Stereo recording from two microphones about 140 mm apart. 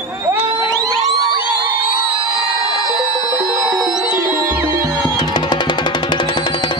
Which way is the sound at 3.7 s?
Centre (ahead or behind).